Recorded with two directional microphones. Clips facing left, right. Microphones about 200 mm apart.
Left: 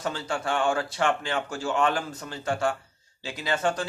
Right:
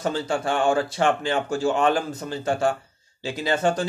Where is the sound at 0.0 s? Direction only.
30° right (ahead or behind).